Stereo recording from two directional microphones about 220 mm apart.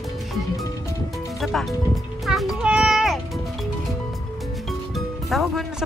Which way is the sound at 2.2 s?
Centre (ahead or behind).